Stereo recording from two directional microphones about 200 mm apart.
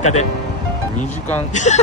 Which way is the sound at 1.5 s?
35° left (ahead or behind).